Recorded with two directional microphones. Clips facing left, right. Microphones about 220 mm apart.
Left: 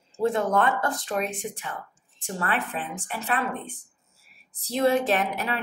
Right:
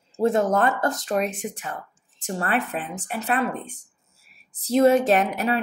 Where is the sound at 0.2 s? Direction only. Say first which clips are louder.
Right 3 dB; 45° right (ahead or behind).